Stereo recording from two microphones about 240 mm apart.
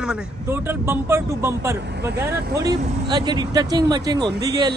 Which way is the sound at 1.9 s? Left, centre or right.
Right.